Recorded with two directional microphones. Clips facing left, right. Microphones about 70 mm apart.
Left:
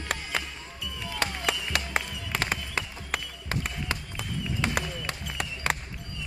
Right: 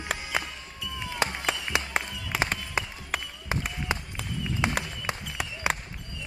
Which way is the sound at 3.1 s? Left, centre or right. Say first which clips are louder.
Even; centre.